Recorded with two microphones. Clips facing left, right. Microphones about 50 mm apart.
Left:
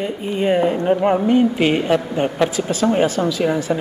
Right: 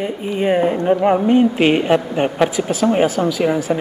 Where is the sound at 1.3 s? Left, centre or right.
Right.